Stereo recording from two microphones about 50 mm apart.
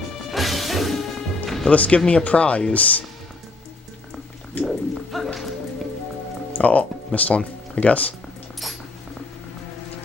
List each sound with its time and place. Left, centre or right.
0.3 s music: centre
1.7 s speech: left
2.0 s speech: centre
2.2 s speech: left
4.6 s a sound: centre
6.5 s speech: left